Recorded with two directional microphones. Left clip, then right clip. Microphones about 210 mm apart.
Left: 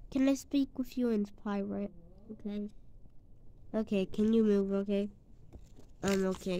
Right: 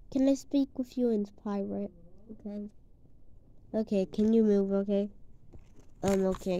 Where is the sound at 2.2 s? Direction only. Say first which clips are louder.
Left 1 dB; 40° left (ahead or behind).